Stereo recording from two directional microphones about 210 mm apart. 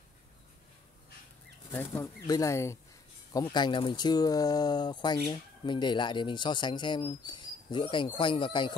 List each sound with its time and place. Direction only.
1.7 s speech: 10° left (ahead or behind)